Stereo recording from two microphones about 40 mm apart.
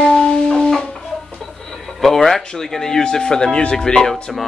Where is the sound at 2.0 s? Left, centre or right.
Centre.